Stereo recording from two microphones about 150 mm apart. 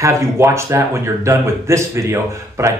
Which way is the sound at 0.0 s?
20° right (ahead or behind).